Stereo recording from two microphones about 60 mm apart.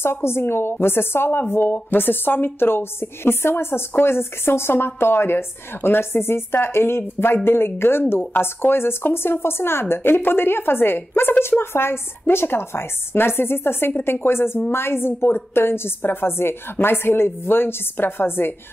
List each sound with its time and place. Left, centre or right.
0.0 s speech: left